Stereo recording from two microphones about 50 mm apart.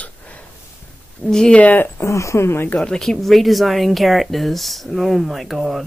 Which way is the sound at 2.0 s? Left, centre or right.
Left.